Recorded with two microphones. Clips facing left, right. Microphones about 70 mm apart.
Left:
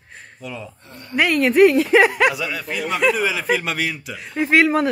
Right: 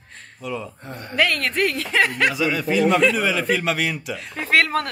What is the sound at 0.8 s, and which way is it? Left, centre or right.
Speech, right.